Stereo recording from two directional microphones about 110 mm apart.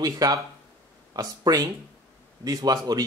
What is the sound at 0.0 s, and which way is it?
A man's voice, 35° right (ahead or behind).